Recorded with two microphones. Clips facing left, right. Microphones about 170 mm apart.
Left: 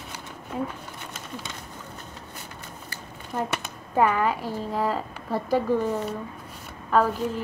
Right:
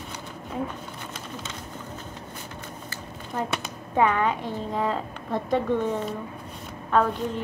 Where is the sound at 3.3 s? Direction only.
5° left (ahead or behind).